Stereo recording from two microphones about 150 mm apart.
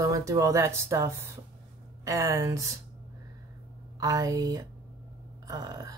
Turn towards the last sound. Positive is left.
turn(degrees=-25)  # may be behind; listen again after turning